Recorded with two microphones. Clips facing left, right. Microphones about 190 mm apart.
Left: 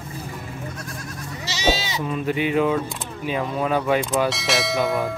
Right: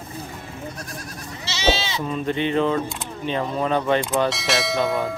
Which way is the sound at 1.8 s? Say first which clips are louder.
Even; 10° left (ahead or behind).